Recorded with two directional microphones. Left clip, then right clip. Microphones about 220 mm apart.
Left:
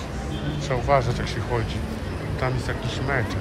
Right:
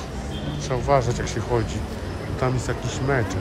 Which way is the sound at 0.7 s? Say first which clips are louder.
Right 1 dB; 25° right (ahead or behind).